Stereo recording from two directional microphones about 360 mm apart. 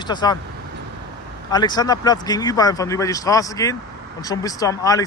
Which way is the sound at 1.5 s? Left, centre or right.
Centre.